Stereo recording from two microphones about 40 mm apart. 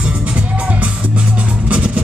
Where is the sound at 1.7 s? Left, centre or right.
Right.